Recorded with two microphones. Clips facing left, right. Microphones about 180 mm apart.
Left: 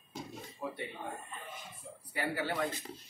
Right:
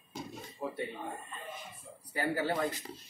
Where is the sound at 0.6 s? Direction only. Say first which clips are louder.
Right 2 dB; 35° right (ahead or behind).